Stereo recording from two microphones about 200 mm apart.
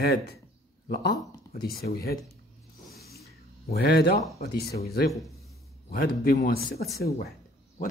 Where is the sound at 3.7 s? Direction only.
55° left (ahead or behind).